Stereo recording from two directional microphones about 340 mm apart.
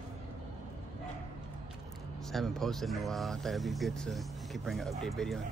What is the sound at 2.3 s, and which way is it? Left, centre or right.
Speech, centre.